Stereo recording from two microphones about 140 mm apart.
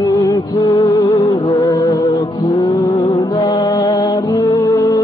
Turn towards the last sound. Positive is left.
turn(degrees=30)  # may be behind; listen again after turning